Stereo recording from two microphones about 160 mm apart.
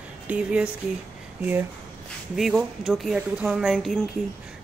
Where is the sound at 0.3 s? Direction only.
5° right (ahead or behind).